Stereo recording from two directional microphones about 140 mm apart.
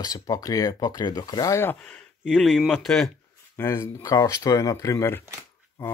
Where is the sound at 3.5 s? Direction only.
20° left (ahead or behind).